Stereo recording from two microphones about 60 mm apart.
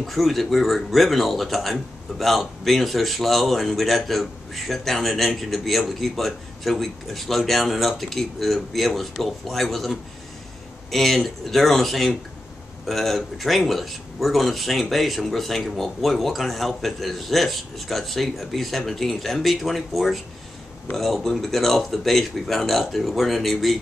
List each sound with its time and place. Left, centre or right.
0.0 s speech: centre